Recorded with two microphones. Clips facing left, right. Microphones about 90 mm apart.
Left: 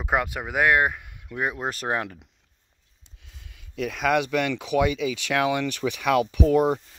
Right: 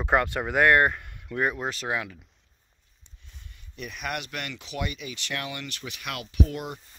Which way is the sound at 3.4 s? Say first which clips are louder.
Left 10 dB; 90° left.